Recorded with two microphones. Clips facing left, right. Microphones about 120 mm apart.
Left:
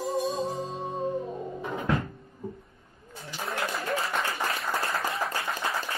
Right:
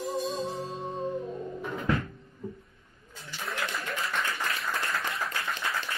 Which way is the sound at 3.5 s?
35° left (ahead or behind).